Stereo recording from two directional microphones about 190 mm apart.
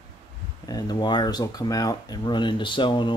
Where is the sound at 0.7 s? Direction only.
20° left (ahead or behind).